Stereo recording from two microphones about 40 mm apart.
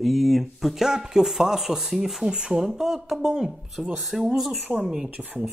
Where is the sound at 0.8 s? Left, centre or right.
Centre.